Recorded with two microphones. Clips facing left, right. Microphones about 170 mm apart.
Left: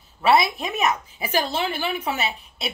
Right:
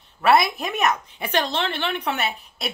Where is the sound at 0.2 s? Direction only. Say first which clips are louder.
Right 1 dB; centre (ahead or behind).